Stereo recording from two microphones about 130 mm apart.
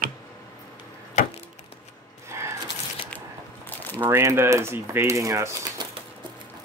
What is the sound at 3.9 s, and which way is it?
Speech, 15° right (ahead or behind).